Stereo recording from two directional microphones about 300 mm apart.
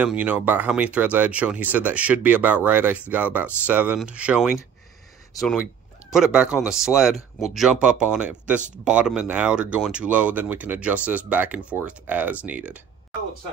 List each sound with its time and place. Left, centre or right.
0.0 s speech: centre